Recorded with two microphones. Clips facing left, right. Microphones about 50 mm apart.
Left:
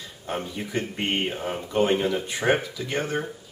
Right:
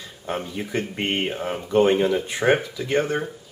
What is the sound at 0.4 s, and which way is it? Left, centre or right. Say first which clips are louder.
Speech: right 1 dB; centre.